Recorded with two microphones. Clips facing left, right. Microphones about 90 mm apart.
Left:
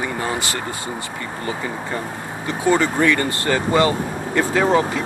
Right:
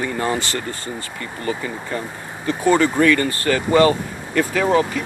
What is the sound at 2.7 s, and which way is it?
Speech, 20° left (ahead or behind).